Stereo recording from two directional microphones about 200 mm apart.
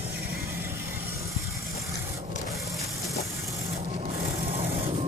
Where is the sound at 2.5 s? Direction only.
Centre (ahead or behind).